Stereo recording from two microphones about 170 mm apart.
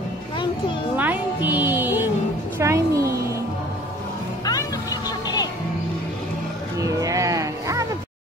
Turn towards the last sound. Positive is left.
turn(degrees=-20)  # may be behind; listen again after turning